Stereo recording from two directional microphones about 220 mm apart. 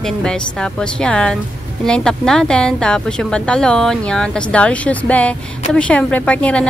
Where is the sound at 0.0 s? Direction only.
5° left (ahead or behind).